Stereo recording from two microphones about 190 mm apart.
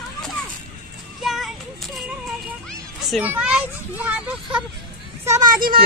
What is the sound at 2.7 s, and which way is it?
Music, centre (ahead or behind).